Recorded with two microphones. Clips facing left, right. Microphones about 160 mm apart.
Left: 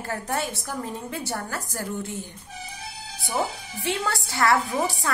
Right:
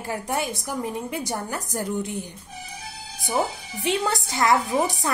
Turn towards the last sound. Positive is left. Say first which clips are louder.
# right 2 dB
turn(degrees=-20)  # may be behind; listen again after turning